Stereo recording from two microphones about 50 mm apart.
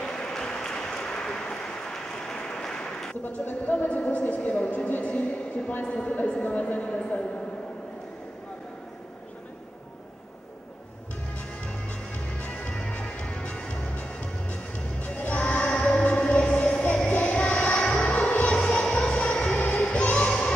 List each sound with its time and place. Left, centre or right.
0.3 s a sound: centre
3.3 s a woman's voice: left
11.3 s music: left